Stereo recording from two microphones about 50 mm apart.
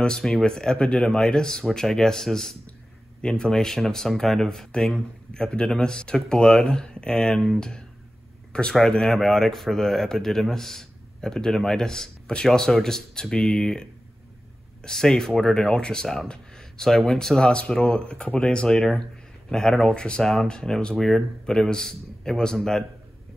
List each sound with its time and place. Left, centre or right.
0.0 s speech: centre
18.7 s speech: centre